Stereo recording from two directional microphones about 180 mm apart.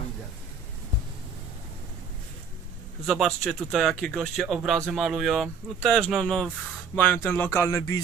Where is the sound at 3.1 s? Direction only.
Centre (ahead or behind).